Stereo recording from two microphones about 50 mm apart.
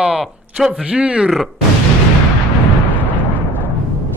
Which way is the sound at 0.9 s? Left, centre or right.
Right.